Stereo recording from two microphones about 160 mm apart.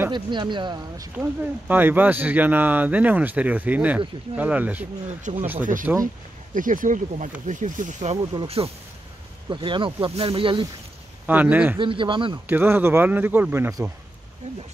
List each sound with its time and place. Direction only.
0.1 s speech: 30° right (ahead or behind)
1.1 s speech: 10° right (ahead or behind)
5.3 s speech: 50° right (ahead or behind)
5.9 s speech: 10° right (ahead or behind)
6.5 s speech: 55° right (ahead or behind)
8.2 s speech: 30° right (ahead or behind)
11.2 s speech: 10° right (ahead or behind)
11.8 s speech: 30° right (ahead or behind)
12.4 s speech: 10° right (ahead or behind)